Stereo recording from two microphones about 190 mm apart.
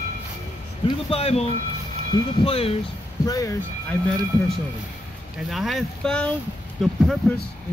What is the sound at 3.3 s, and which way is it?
Speech, 15° left (ahead or behind).